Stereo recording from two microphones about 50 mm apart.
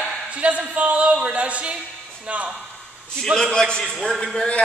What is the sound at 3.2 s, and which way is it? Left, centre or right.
Speech, centre.